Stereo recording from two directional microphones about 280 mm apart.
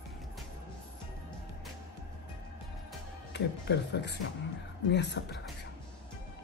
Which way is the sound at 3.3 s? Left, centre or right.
Left.